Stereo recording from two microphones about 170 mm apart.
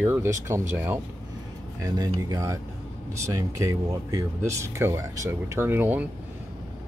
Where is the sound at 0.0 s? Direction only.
15° right (ahead or behind).